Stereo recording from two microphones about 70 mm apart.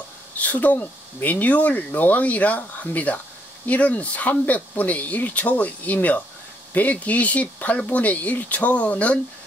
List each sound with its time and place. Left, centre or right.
0.4 s speech: left